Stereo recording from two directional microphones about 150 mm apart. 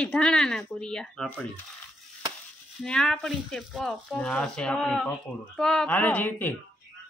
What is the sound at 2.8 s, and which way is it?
A man's voice, 5° left (ahead or behind).